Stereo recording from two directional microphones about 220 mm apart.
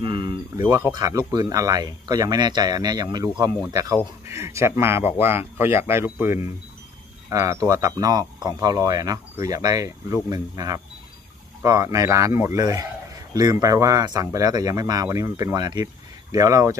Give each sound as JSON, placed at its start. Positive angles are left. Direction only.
{"t": 0.0, "sound": "a man's voice", "side_deg": -20}